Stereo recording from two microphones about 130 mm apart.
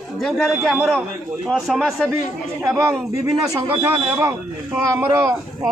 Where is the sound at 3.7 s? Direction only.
20° right (ahead or behind).